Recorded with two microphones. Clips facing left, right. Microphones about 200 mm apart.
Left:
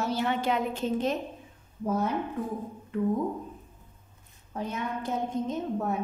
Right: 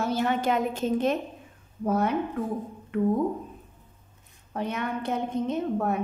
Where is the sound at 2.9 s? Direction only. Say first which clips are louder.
Right 3 dB; 65° right (ahead or behind).